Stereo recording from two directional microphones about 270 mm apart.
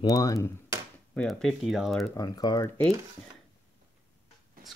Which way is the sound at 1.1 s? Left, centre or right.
Centre.